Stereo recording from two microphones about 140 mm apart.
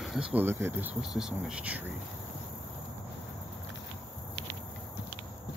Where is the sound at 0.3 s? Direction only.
15° right (ahead or behind).